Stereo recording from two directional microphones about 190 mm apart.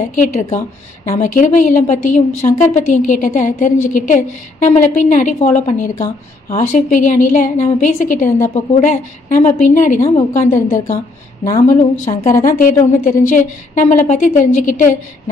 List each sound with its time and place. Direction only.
0.1 s a woman's voice: 40° left (ahead or behind)